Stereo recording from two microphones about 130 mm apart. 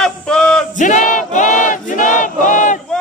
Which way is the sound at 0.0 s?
5° left (ahead or behind).